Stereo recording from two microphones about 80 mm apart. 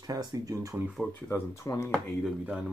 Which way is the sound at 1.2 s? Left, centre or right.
Left.